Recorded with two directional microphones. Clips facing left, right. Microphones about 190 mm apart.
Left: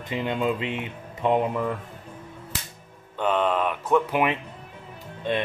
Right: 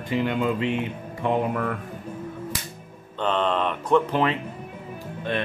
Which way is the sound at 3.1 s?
10° left (ahead or behind).